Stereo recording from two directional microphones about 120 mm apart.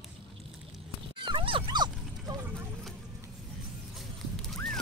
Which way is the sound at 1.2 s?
45° right (ahead or behind).